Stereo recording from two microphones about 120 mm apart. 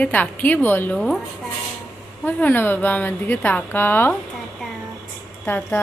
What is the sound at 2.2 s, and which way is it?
Speech, 15° left (ahead or behind).